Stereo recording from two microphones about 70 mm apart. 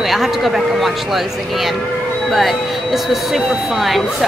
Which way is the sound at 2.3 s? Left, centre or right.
Centre.